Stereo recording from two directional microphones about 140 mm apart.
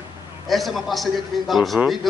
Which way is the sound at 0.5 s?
Centre (ahead or behind).